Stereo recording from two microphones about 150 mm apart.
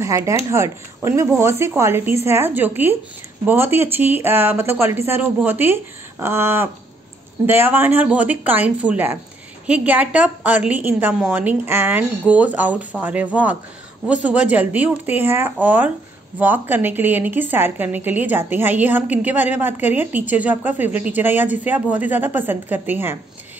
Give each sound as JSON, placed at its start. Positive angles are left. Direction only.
{"t": 0.0, "sound": "a woman's voice", "side_deg": -20}